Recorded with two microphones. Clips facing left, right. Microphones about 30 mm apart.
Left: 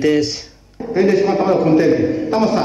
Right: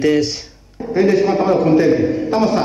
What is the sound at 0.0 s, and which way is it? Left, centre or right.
A man's voice, left.